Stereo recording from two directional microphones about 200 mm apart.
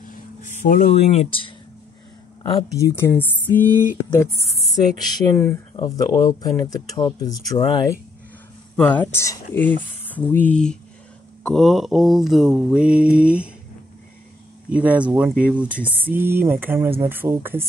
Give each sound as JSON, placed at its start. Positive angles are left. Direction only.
{"t": 0.0, "sound": "a sound", "side_deg": 40}
{"t": 2.5, "sound": "speech", "side_deg": 15}
{"t": 8.7, "sound": "speech", "side_deg": 5}
{"t": 10.0, "sound": "a sound", "side_deg": 10}
{"t": 11.4, "sound": "mantra", "side_deg": 0}
{"t": 14.7, "sound": "speech", "side_deg": -5}